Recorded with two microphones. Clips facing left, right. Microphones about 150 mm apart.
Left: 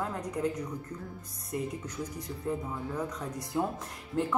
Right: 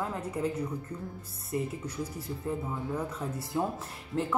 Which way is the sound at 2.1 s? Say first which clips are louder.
Even; 5° right (ahead or behind).